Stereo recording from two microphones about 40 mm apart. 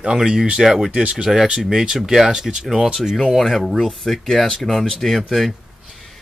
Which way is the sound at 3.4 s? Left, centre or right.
Centre.